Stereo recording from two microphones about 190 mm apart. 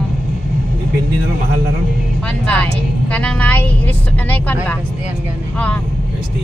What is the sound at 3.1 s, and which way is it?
A woman's voice, 5° left (ahead or behind).